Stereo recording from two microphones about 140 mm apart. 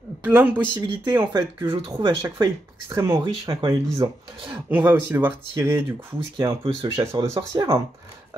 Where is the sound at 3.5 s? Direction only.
20° right (ahead or behind).